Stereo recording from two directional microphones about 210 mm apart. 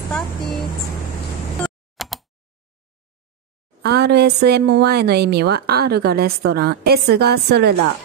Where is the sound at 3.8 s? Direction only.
50° right (ahead or behind).